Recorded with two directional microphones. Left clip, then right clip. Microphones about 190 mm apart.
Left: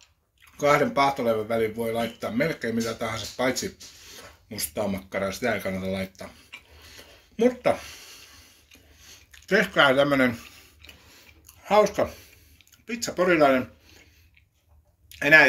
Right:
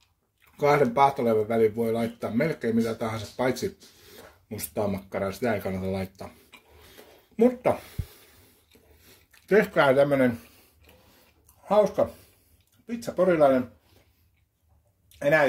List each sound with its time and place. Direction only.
0.6 s speech: 50° right (ahead or behind)
7.3 s speech: 45° right (ahead or behind)
9.5 s speech: 45° right (ahead or behind)
11.6 s speech: 35° right (ahead or behind)
15.0 s a sound: 35° right (ahead or behind)